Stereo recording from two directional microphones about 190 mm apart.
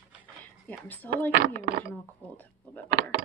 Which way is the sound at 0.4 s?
10° left (ahead or behind).